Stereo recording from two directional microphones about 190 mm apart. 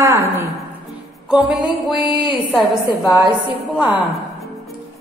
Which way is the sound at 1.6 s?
25° left (ahead or behind).